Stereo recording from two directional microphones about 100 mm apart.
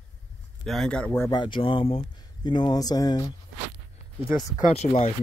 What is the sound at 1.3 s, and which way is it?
Speech, 50° left (ahead or behind).